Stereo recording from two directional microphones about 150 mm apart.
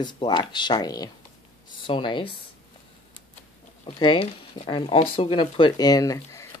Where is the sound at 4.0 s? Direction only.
40° left (ahead or behind).